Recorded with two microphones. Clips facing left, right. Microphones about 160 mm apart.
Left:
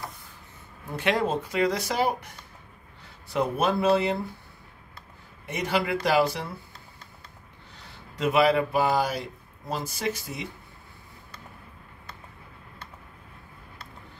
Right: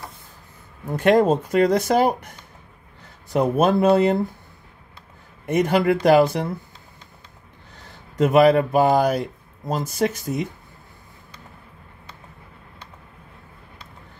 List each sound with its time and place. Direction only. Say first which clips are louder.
0.9 s speech: right 9 dB; 45° right (ahead or behind)
5.5 s speech: right 8 dB; 50° right (ahead or behind)
7.7 s speech: right 11 dB; 50° right (ahead or behind)